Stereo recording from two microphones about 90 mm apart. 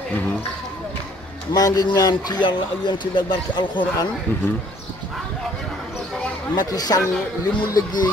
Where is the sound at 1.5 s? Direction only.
45° left (ahead or behind).